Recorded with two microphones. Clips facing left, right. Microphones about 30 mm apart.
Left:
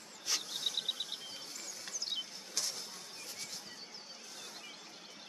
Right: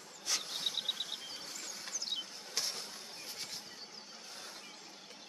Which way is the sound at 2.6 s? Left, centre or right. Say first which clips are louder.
Right 1 dB; right.